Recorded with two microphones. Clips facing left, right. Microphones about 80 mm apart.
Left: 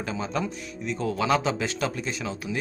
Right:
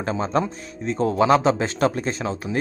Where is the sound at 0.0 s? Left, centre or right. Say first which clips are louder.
Right 6 dB; right.